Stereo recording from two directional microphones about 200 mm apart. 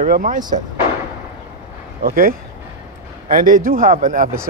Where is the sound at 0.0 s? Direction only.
40° right (ahead or behind).